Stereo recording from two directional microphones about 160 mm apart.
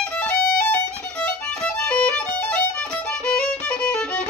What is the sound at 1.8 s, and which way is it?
Violin, 5° left (ahead or behind).